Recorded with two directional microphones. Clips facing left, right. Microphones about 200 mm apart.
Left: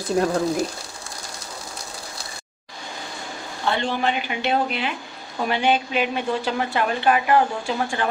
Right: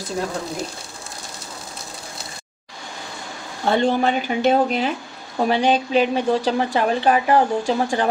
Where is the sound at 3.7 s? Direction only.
40° right (ahead or behind).